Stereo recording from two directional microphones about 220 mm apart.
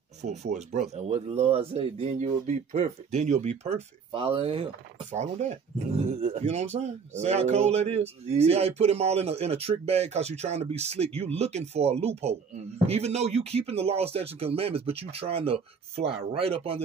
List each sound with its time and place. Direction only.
0.2 s speech: 30° right (ahead or behind)